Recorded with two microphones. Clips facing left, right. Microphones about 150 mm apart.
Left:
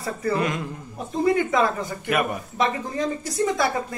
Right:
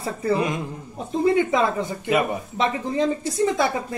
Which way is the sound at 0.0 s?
20° right (ahead or behind).